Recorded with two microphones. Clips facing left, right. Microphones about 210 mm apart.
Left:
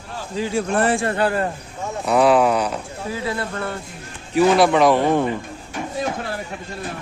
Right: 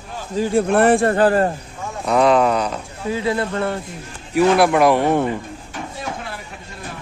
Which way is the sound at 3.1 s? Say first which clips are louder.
Right 6 dB; 20° right (ahead or behind).